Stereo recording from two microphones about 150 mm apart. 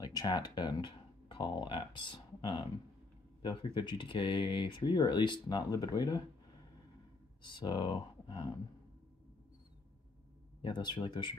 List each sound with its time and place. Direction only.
0.0 s speech: 25° left (ahead or behind)
7.4 s speech: 30° left (ahead or behind)
10.6 s speech: 30° left (ahead or behind)